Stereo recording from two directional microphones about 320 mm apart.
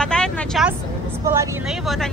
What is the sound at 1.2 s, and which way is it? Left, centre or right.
Speech, centre.